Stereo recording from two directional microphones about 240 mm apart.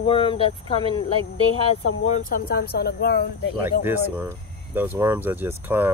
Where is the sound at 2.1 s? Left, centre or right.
Left.